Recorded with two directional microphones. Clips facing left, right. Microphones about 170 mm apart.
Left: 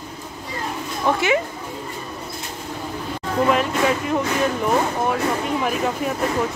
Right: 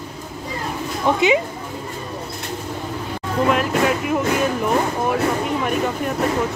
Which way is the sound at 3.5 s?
Centre (ahead or behind).